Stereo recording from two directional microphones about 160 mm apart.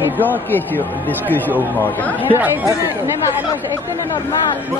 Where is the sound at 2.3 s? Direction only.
10° right (ahead or behind).